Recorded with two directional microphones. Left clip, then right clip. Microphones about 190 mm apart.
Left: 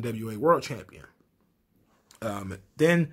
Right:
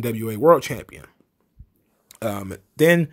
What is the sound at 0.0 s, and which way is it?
Speech, 40° right (ahead or behind).